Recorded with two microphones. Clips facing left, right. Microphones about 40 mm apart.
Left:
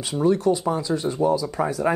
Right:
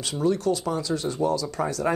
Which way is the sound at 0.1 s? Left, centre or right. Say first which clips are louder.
Left 4 dB; centre.